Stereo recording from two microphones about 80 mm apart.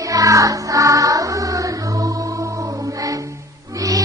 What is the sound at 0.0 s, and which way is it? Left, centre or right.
Music, right.